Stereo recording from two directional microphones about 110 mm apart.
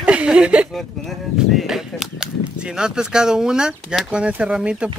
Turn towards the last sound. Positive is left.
turn(degrees=-10)  # may be behind; listen again after turning